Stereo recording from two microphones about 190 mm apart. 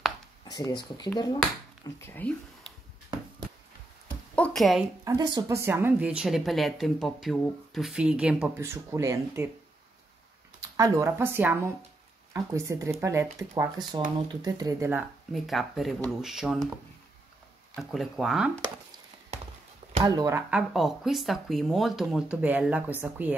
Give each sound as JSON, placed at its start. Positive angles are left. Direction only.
{"t": 0.5, "sound": "speech", "side_deg": 20}
{"t": 4.4, "sound": "a woman's voice", "side_deg": 0}
{"t": 5.0, "sound": "a woman's voice", "side_deg": -20}
{"t": 10.8, "sound": "a woman's voice", "side_deg": -15}
{"t": 15.3, "sound": "speech", "side_deg": 0}
{"t": 17.7, "sound": "speech", "side_deg": 0}
{"t": 20.1, "sound": "speech", "side_deg": -15}